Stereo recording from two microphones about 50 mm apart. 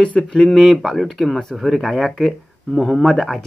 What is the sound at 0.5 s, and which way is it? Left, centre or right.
Speech, centre.